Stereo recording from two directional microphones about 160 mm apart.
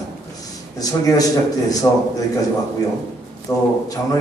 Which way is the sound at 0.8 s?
20° left (ahead or behind).